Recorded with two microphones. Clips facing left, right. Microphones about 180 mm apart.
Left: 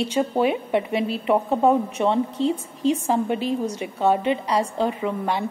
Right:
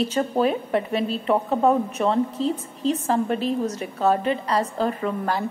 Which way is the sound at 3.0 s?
10° left (ahead or behind).